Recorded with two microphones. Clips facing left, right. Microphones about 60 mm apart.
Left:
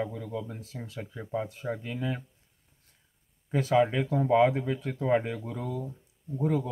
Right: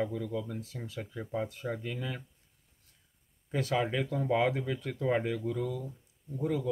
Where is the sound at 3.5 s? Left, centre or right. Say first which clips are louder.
Left 6 dB; centre.